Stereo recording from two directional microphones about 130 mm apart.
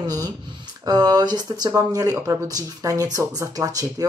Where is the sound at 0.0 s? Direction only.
30° right (ahead or behind).